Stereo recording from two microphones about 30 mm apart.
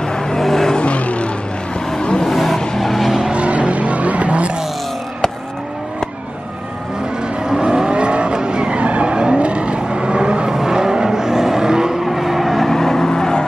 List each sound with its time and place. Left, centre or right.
0.0 s vehicle: left
0.4 s vehicle: centre
0.7 s vehicle: left
2.0 s vehicle: left
2.2 s vehicle: centre
3.3 s vehicle: right
7.6 s vehicle: right
7.9 s vehicle: right
8.8 s vehicle: right
9.1 s vehicle: right
10.5 s vehicle: right
12.0 s vehicle: centre
12.6 s vehicle: centre